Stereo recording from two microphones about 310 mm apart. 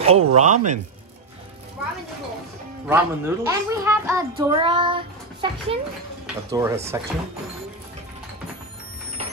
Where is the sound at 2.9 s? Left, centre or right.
Centre.